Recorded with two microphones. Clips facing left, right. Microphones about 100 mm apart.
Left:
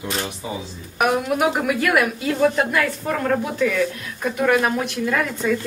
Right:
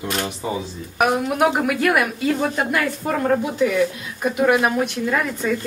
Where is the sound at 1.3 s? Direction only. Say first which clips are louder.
Right 1 dB; centre (ahead or behind).